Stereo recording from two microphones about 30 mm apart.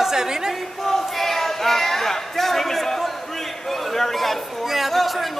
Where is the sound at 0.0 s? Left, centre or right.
Centre.